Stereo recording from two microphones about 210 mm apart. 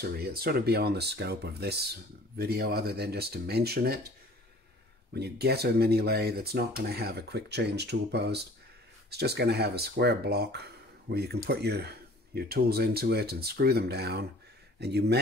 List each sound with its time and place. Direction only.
0.0 s speech: 50° right (ahead or behind)
5.1 s speech: 50° right (ahead or behind)